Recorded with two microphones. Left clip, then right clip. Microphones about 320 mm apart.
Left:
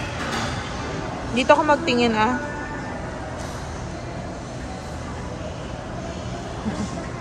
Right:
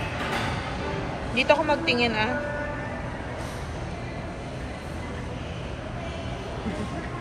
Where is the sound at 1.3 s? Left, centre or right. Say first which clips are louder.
Left 5 dB; left.